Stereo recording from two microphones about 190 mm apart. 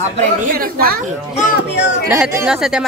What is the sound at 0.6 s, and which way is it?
Speech, 50° right (ahead or behind).